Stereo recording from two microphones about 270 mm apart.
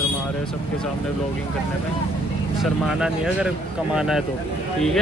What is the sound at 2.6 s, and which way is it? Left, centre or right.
Speech, centre.